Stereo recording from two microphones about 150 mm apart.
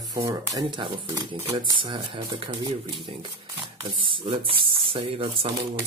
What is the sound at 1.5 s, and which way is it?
Speech, 35° right (ahead or behind).